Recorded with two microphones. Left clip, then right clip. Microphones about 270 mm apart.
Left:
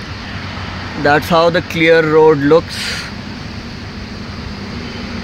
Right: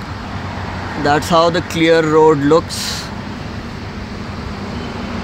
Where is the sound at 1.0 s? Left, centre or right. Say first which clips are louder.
Left 2 dB; centre.